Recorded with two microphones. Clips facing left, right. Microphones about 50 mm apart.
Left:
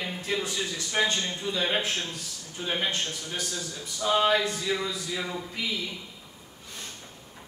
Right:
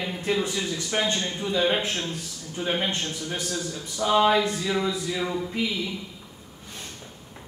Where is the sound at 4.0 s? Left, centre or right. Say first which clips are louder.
Right 3 dB; right.